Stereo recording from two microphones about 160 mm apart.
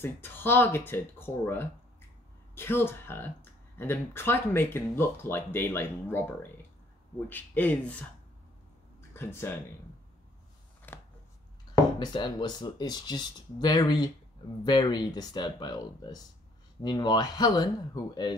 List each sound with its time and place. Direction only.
0.0 s speech: 15° left (ahead or behind)
9.1 s speech: 15° left (ahead or behind)
10.9 s a sound: 10° left (ahead or behind)
12.0 s speech: 25° left (ahead or behind)